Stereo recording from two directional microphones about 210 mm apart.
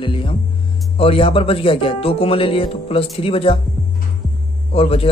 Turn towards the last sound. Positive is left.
turn(degrees=25)  # may be behind; listen again after turning